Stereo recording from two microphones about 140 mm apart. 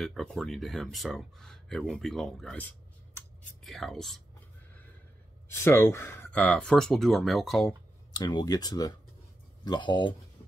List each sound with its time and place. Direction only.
0.0 s speech: centre (ahead or behind)
5.5 s speech: 15° left (ahead or behind); by 7.7 s centre (ahead or behind)
8.2 s speech: 30° left (ahead or behind)